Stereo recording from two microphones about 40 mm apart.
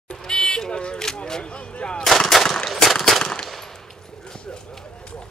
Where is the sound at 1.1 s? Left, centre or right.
Left.